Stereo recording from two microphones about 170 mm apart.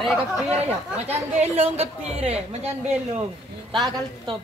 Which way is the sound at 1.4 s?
35° right (ahead or behind).